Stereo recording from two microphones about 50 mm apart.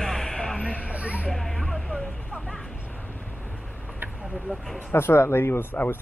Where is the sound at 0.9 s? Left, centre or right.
Right.